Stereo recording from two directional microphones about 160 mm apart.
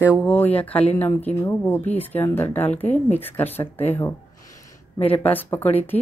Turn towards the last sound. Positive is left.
turn(degrees=10)  # may be behind; listen again after turning